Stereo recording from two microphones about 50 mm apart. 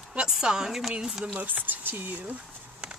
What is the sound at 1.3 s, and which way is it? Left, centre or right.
Speech, right.